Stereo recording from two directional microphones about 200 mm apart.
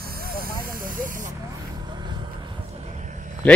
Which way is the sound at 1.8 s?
20° right (ahead or behind).